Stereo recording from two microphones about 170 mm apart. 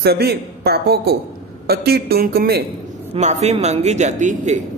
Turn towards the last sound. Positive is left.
turn(degrees=-45)  # may be behind; listen again after turning